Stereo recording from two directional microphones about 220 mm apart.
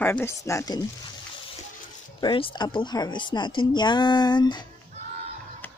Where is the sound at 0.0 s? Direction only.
10° left (ahead or behind).